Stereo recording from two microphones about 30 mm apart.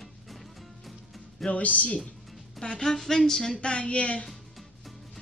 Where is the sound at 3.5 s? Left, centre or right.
Left.